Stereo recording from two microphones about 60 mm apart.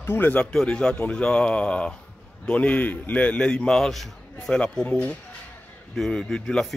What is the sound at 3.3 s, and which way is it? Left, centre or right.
Speech, centre.